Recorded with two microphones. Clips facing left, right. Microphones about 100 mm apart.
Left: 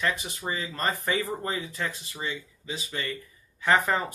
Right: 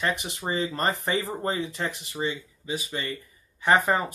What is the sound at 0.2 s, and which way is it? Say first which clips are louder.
Speech: right 4 dB; 30° right (ahead or behind).